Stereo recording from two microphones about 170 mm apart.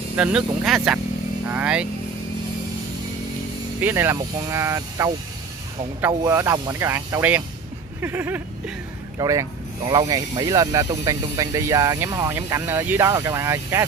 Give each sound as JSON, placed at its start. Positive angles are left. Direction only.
{"t": 0.1, "sound": "speech", "side_deg": -5}
{"t": 3.8, "sound": "speech", "side_deg": -15}
{"t": 8.0, "sound": "a sound", "side_deg": -15}
{"t": 9.2, "sound": "speech", "side_deg": -20}